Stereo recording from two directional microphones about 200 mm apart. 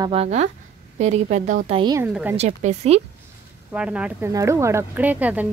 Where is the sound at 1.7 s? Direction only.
20° right (ahead or behind).